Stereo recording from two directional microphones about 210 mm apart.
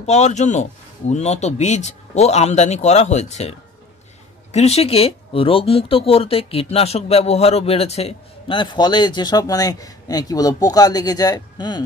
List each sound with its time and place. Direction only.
0.0 s a man's voice: 30° left (ahead or behind)